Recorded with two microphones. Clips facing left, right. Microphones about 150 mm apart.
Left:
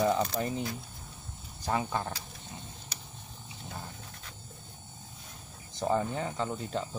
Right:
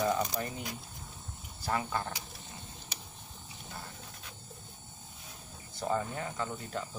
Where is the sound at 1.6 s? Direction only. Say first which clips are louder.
Left 2 dB; 20° left (ahead or behind).